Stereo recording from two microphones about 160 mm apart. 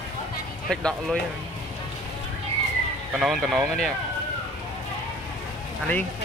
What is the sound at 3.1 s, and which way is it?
Speech, 5° right (ahead or behind).